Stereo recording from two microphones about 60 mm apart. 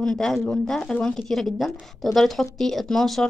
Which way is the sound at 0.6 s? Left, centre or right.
Centre.